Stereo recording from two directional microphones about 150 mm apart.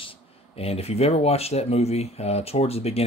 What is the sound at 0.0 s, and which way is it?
Speech, 40° left (ahead or behind).